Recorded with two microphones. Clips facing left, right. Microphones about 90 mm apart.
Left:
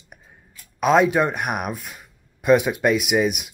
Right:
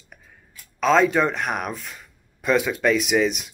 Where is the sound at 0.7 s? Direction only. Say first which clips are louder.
Left 1 dB; 15° left (ahead or behind).